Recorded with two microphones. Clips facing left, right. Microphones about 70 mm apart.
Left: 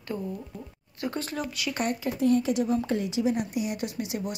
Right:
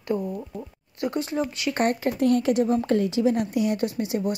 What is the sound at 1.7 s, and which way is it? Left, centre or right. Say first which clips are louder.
Speech: right 6 dB; right.